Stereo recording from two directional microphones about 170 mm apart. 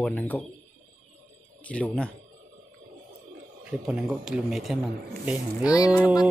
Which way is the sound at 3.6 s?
5° right (ahead or behind).